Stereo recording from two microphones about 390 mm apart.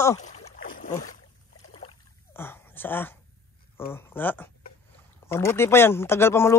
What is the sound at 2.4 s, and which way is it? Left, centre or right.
Speech, centre.